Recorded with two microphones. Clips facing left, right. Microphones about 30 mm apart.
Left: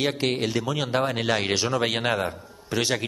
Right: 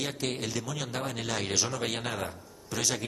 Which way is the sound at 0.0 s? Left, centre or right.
Left.